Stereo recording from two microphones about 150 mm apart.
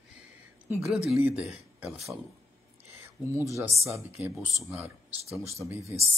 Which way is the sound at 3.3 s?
20° right (ahead or behind).